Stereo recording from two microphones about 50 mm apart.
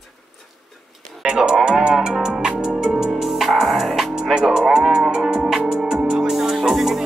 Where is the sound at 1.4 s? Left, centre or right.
Centre.